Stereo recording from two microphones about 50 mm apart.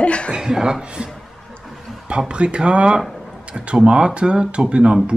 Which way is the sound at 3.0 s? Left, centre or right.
Centre.